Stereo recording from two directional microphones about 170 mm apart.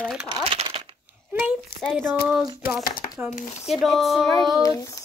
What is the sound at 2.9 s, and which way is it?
Crumpling, 60° left (ahead or behind).